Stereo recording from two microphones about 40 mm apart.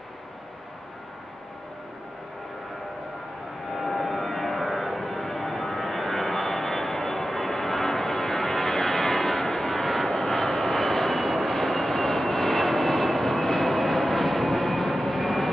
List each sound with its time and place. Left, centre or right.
3.7 s vehicle: centre
10.0 s vehicle: left; by 15.5 s centre